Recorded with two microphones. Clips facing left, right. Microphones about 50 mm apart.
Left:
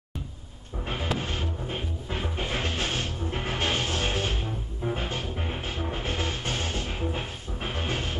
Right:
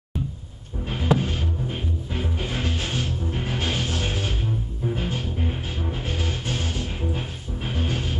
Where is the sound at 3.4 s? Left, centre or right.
Left.